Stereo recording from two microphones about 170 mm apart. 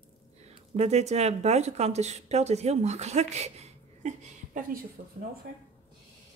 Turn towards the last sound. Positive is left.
turn(degrees=-65)  # may be behind; listen again after turning